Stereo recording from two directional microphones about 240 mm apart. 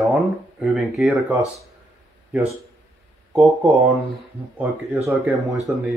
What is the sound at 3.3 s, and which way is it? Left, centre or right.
Speech, centre.